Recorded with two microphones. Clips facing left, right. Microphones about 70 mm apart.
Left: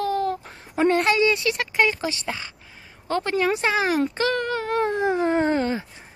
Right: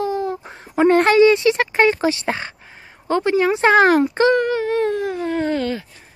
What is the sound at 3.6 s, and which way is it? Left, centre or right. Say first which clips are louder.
Speech: right 9 dB; right.